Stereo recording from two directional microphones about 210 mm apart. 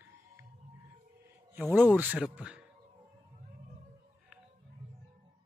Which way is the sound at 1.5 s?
10° right (ahead or behind).